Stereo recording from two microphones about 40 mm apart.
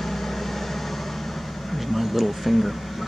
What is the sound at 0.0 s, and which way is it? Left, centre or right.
Vehicle, centre.